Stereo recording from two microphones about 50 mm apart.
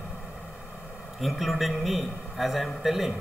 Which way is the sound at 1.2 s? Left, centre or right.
Centre.